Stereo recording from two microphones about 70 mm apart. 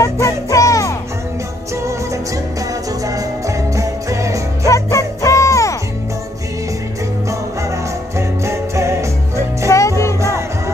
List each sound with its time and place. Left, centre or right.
0.0 s music: left
3.4 s music: right
4.6 s music: left
8.5 s music: right
9.7 s music: left